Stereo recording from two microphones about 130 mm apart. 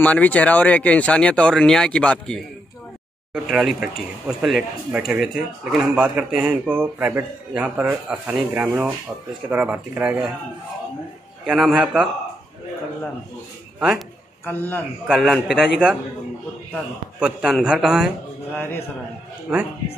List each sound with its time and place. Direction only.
0.0 s speech: 10° left (ahead or behind)
3.3 s speech: 5° right (ahead or behind)
11.4 s a man's voice: centre (ahead or behind)
13.7 s speech: centre (ahead or behind)
14.4 s speech: 15° left (ahead or behind)
15.0 s a man's voice: centre (ahead or behind)
17.2 s a man's voice: 5° right (ahead or behind)
18.5 s speech: 15° left (ahead or behind)